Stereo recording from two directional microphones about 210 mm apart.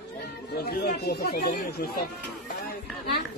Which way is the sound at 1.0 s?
50° left (ahead or behind).